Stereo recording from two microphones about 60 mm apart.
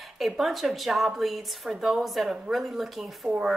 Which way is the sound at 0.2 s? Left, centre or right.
Centre.